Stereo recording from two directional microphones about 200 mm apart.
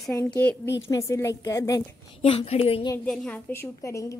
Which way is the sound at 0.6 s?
60° left (ahead or behind).